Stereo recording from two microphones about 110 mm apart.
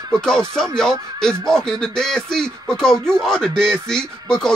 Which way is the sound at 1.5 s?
5° left (ahead or behind).